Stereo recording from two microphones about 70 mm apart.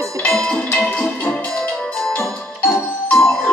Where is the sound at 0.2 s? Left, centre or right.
Centre.